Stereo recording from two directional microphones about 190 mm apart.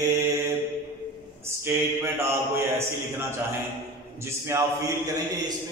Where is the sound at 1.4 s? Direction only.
15° right (ahead or behind).